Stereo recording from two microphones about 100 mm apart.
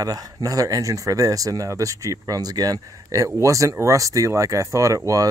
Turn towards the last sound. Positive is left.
turn(degrees=-35)  # may be behind; listen again after turning